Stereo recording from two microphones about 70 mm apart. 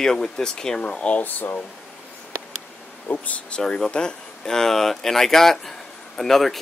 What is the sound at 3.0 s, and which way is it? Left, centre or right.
Speech, left.